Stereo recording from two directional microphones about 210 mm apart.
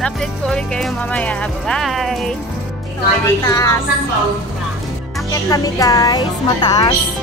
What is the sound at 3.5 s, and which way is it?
Speech, 15° left (ahead or behind).